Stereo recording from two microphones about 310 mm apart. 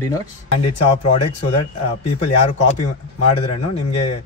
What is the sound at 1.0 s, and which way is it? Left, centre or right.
Speech, left.